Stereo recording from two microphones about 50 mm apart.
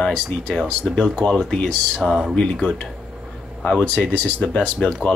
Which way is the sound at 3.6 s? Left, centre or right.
Left.